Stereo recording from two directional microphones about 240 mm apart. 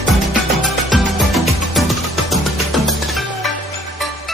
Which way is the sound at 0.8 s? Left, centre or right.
Centre.